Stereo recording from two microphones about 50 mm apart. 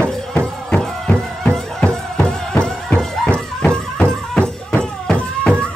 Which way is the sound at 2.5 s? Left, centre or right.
Centre.